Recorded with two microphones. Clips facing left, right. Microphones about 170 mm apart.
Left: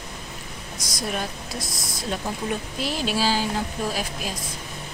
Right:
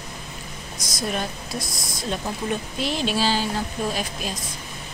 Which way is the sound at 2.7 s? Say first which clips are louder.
Right 2 dB; 5° left (ahead or behind).